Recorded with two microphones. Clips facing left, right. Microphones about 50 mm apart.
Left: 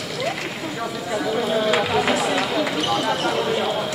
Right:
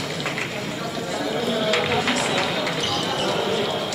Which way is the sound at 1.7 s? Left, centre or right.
Centre.